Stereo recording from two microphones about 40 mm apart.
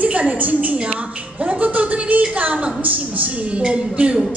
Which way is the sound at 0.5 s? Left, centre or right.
Right.